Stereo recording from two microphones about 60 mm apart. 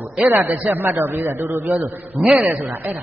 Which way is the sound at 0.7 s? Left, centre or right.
Right.